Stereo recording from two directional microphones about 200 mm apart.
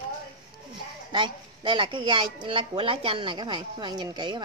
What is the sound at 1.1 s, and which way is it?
A woman's voice, 25° right (ahead or behind).